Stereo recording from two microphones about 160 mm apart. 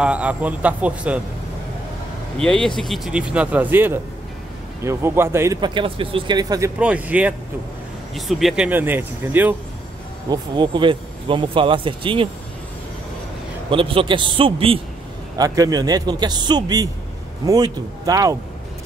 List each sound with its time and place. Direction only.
0.0 s speech: 10° right (ahead or behind)
2.3 s speech: 5° left (ahead or behind); by 5.6 s 15° right (ahead or behind)
5.6 s a man's voice: 30° right (ahead or behind)
6.8 s speech: 10° right (ahead or behind)
10.3 s speech: 30° right (ahead or behind)
13.7 s speech: 35° right (ahead or behind)
15.3 s a man's voice: 25° right (ahead or behind)